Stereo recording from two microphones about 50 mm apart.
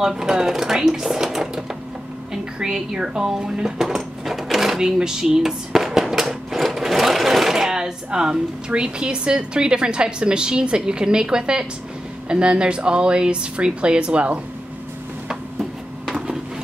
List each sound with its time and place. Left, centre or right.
0.0 s speech: centre